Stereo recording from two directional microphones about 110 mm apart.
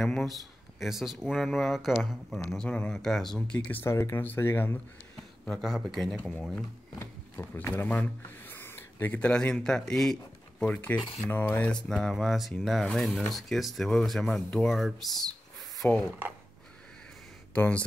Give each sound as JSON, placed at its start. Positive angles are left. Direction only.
{"t": 0.0, "sound": "speech", "side_deg": 5}
{"t": 3.6, "sound": "speech", "side_deg": 20}
{"t": 5.4, "sound": "speech", "side_deg": 0}
{"t": 7.0, "sound": "speech", "side_deg": 20}
{"t": 15.8, "sound": "speech", "side_deg": 20}
{"t": 17.6, "sound": "speech", "side_deg": 10}